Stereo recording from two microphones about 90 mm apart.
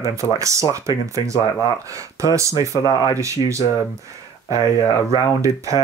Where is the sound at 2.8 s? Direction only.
45° left (ahead or behind).